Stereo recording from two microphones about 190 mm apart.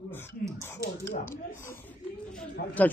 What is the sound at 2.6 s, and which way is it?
Speech, 60° left (ahead or behind).